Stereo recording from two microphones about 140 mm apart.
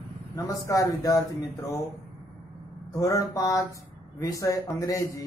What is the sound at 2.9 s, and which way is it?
Speech, 25° left (ahead or behind).